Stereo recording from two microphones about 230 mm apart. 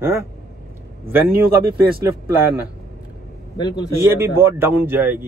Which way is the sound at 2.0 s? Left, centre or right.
Centre.